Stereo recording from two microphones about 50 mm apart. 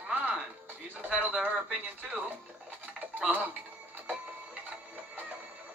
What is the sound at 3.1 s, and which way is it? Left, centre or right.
Speech, right.